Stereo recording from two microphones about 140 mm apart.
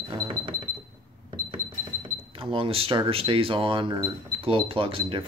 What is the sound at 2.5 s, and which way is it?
Speech, 40° right (ahead or behind).